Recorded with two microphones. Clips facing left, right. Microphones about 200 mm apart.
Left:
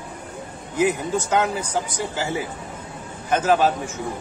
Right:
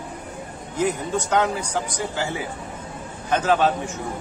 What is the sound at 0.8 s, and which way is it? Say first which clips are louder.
Speech: left 2 dB; 5° left (ahead or behind).